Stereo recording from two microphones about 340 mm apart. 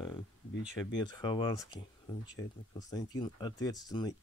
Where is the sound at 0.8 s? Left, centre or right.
Centre.